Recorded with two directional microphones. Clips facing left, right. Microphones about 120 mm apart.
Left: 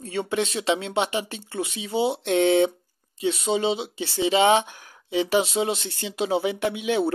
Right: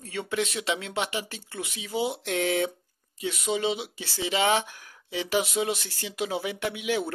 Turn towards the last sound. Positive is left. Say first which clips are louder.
# left 5 dB
turn(degrees=25)  # may be behind; listen again after turning